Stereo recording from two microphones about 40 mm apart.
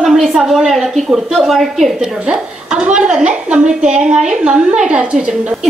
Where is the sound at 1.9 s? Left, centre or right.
Centre.